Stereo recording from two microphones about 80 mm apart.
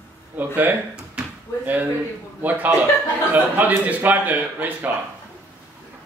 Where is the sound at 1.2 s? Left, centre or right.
Centre.